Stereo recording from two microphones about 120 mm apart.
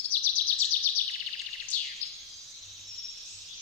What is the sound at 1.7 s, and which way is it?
Bird, 15° left (ahead or behind).